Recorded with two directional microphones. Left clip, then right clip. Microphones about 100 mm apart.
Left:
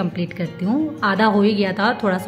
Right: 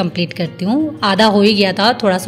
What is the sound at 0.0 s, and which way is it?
A woman's voice, 40° right (ahead or behind).